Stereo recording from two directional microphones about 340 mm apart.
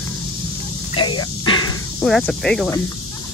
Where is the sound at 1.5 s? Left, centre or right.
Left.